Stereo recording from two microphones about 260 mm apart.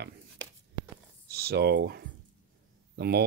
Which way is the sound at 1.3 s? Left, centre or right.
Right.